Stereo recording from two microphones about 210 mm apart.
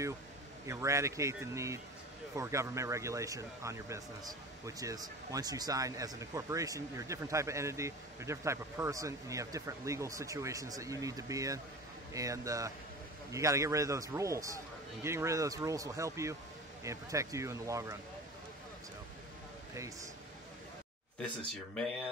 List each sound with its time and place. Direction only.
0.7 s speech: 15° right (ahead or behind)
21.2 s speech: 5° left (ahead or behind)